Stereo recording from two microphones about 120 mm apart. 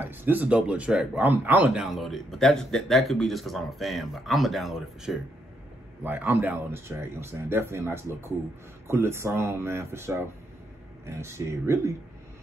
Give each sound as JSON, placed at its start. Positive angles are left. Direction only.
{"t": 0.0, "sound": "a man's voice", "side_deg": -15}
{"t": 6.0, "sound": "speech", "side_deg": -15}